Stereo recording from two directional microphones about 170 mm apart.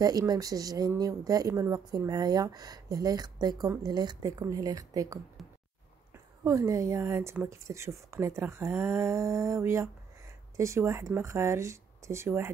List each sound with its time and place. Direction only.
0.0 s speech: 20° right (ahead or behind)
6.4 s speech: 20° right (ahead or behind)